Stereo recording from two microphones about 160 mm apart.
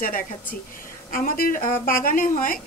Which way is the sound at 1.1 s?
65° left (ahead or behind).